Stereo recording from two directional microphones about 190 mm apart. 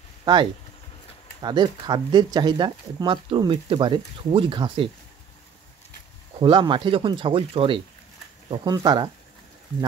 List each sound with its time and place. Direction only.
0.2 s speech: 25° right (ahead or behind)
6.4 s speech: 25° right (ahead or behind)